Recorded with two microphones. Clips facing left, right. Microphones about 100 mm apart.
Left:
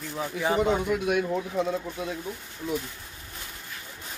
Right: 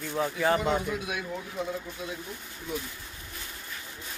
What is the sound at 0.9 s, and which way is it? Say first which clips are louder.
Speech: left 8 dB; 60° left (ahead or behind).